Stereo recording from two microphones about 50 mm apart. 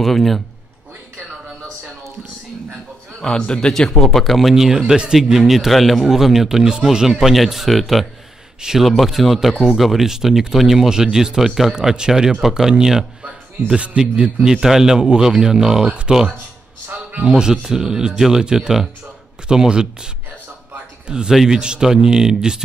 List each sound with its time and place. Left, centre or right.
0.0 s speech: centre
3.2 s a man's voice: centre
21.1 s speech: centre